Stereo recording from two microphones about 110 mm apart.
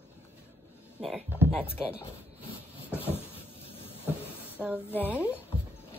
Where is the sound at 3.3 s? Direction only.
60° left (ahead or behind).